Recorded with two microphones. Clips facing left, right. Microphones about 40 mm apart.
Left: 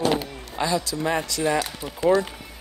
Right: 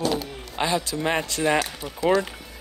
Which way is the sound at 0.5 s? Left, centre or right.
Right.